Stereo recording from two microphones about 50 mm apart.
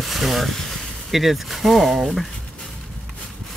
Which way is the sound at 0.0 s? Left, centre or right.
Centre.